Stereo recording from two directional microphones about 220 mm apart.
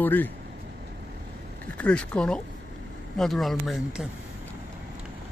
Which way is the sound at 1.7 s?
5° left (ahead or behind).